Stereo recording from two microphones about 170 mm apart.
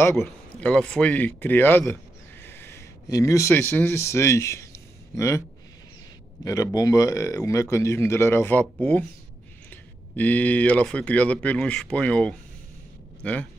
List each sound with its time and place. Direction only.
0.1 s speech: 5° left (ahead or behind)
6.4 s speech: 20° left (ahead or behind)